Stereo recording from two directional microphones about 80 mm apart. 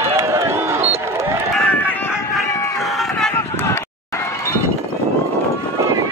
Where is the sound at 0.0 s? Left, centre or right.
Right.